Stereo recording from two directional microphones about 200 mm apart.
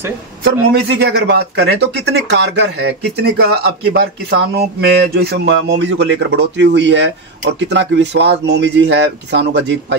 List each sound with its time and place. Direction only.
0.4 s speech: 55° right (ahead or behind)